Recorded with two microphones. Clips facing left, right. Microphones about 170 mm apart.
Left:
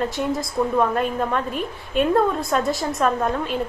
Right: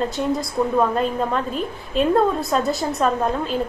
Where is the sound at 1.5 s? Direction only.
30° right (ahead or behind).